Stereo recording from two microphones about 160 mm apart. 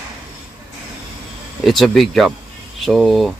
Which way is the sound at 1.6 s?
Centre (ahead or behind).